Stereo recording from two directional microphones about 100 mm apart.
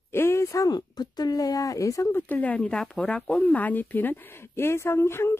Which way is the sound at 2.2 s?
15° left (ahead or behind).